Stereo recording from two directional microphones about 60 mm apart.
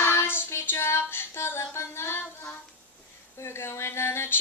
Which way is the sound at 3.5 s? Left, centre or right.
Left.